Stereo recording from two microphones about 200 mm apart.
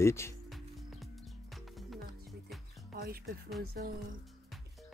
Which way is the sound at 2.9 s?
50° right (ahead or behind).